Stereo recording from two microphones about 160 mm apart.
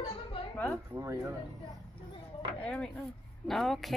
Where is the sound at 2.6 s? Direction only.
5° left (ahead or behind).